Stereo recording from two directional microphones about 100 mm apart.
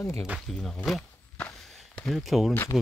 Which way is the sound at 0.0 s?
25° left (ahead or behind).